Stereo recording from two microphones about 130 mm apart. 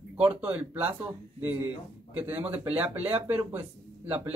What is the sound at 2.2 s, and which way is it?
Speech, 10° right (ahead or behind).